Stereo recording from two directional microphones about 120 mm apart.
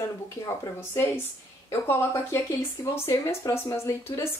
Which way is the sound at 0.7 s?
20° left (ahead or behind).